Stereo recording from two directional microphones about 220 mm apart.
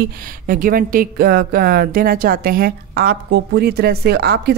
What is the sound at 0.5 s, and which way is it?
A woman's voice, 40° right (ahead or behind).